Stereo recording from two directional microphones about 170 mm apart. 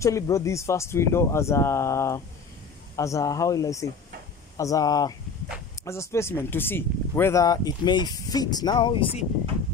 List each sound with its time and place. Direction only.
0.0 s speech: 15° left (ahead or behind)